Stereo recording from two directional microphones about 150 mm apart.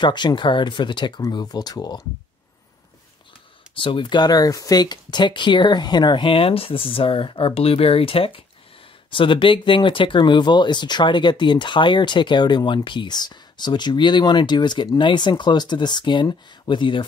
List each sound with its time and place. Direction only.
0.0 s speech: 30° left (ahead or behind)
3.7 s speech: 35° left (ahead or behind)